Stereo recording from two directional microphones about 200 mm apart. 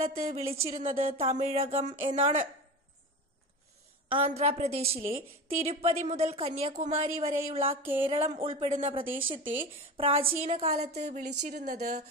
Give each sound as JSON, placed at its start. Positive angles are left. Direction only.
{"t": 0.2, "sound": "a woman's voice", "side_deg": -35}
{"t": 4.1, "sound": "a woman's voice", "side_deg": -30}
{"t": 11.1, "sound": "speech", "side_deg": -50}